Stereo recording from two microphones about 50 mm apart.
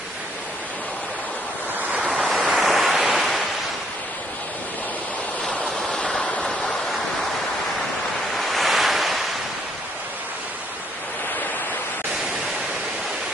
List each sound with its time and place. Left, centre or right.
2.0 s waves: right
2.5 s waves: centre
5.9 s a sound: centre
8.2 s waves: centre